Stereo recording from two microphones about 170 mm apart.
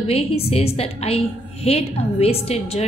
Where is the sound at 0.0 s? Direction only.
35° left (ahead or behind).